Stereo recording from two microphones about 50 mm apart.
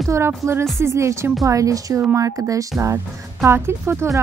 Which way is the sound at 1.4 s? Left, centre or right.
Right.